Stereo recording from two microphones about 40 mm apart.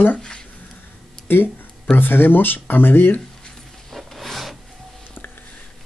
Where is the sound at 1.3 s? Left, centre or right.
Left.